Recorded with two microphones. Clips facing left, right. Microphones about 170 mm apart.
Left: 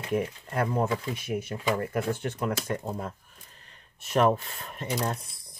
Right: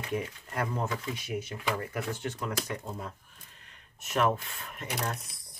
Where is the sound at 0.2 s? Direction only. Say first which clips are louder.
Left 5 dB; 50° left (ahead or behind).